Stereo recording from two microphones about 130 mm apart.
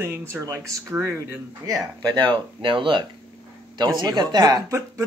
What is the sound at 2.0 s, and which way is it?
Speech, 35° right (ahead or behind).